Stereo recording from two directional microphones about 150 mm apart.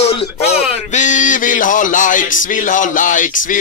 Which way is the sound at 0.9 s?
55° left (ahead or behind).